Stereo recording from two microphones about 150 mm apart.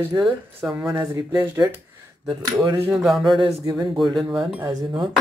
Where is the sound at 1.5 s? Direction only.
20° right (ahead or behind).